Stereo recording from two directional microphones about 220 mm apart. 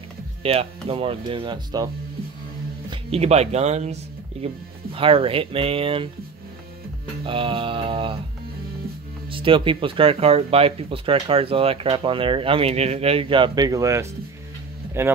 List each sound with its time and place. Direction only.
0.4 s speech: 25° right (ahead or behind)
2.9 s speech: 30° right (ahead or behind)
7.2 s speech: 25° right (ahead or behind)
9.3 s speech: 25° right (ahead or behind)